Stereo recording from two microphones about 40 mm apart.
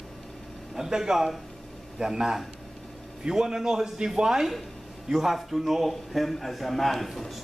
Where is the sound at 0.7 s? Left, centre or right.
Centre.